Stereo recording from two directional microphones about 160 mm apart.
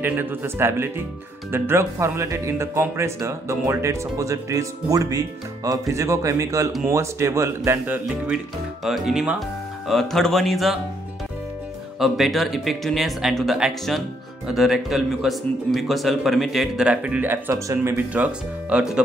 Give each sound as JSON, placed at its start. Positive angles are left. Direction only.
{"t": 0.0, "sound": "speech", "side_deg": -10}
{"t": 12.0, "sound": "speech", "side_deg": 0}